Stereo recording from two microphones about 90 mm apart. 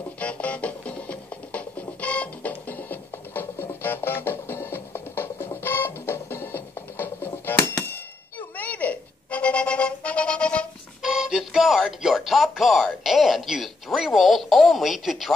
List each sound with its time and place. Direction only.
0.2 s music: 15° left (ahead or behind)
11.0 s music: 5° right (ahead or behind)